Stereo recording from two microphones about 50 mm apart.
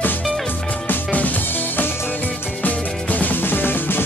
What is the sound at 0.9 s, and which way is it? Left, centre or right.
Music, left.